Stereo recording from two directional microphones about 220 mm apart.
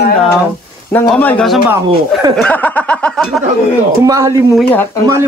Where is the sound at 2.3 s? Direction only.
5° left (ahead or behind).